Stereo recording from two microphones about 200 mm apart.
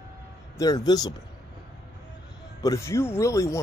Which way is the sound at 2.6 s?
15° left (ahead or behind).